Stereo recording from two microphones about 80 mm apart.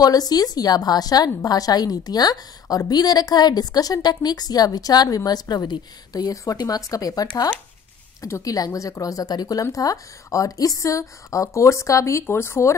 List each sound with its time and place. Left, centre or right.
0.0 s a woman's voice: left